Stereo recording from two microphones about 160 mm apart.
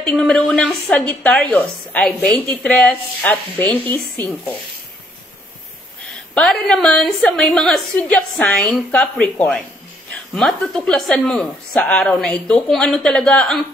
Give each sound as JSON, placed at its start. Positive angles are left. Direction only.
{"t": 0.0, "sound": "a woman's voice", "side_deg": 5}
{"t": 6.0, "sound": "a woman's voice", "side_deg": 5}